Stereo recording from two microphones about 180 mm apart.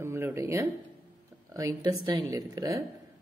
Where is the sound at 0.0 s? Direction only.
15° right (ahead or behind).